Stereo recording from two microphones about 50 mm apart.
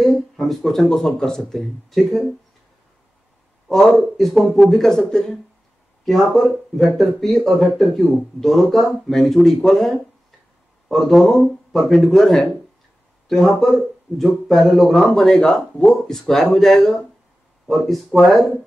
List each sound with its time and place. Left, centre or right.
0.0 s speech: centre
3.6 s speech: centre
15.2 s speech: centre
16.1 s speech: centre